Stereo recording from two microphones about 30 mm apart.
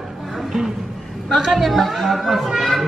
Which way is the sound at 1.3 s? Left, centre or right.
Centre.